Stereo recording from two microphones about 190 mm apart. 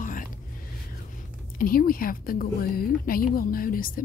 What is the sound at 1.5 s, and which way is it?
A woman's voice, 50° left (ahead or behind).